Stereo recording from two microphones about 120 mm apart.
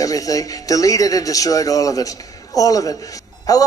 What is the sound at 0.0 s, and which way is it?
A man's voice, 30° left (ahead or behind).